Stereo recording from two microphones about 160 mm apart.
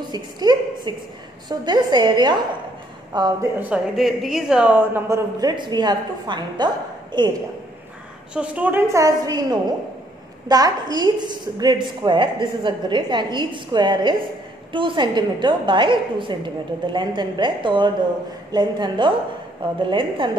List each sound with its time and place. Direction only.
0.1 s a woman's voice: 25° right (ahead or behind)
3.5 s a woman's voice: 10° right (ahead or behind); by 7.4 s 25° right (ahead or behind)
8.4 s a woman's voice: 10° right (ahead or behind); by 20.2 s 30° right (ahead or behind)